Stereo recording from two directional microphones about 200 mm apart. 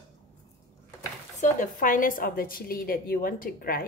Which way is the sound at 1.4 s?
40° left (ahead or behind).